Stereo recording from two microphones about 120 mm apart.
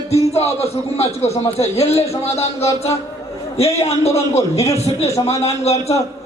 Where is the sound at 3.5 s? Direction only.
60° left (ahead or behind).